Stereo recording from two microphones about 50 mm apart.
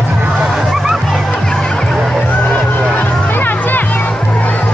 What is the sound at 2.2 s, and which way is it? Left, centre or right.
Vehicle, left.